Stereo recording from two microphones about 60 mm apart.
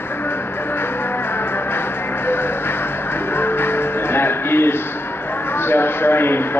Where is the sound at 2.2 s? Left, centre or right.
Left.